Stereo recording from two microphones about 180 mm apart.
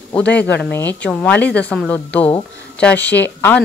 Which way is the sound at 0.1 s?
5° left (ahead or behind).